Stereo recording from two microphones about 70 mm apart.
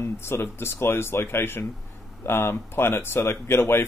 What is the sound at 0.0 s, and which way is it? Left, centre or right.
Speech, left.